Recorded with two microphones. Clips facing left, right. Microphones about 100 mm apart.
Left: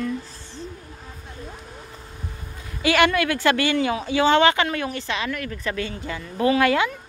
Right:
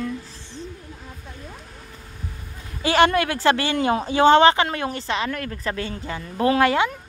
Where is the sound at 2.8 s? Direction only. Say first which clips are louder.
Right 1 dB; 35° right (ahead or behind).